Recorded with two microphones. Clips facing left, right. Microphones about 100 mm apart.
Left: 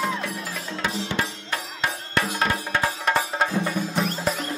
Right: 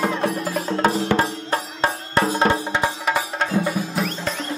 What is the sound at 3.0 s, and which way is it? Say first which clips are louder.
Music: even; 5° right (ahead or behind).